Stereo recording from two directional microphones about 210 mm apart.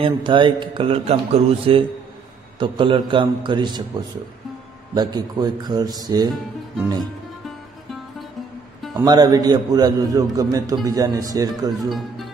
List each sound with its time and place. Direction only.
0.0 s speech: 25° right (ahead or behind)
4.9 s speech: 20° right (ahead or behind)
8.9 s a man's voice: 20° right (ahead or behind)